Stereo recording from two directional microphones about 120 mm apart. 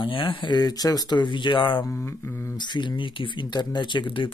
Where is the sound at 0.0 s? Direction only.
45° left (ahead or behind).